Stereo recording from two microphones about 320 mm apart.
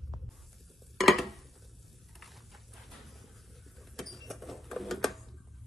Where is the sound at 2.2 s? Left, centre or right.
Centre.